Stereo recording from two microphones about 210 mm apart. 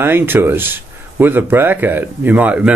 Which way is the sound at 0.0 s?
10° right (ahead or behind).